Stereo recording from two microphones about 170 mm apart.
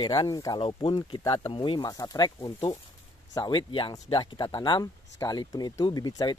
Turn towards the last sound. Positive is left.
turn(degrees=25)  # may be behind; listen again after turning